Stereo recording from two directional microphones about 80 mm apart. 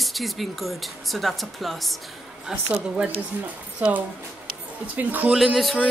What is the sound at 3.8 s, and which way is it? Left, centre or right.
Speech, centre.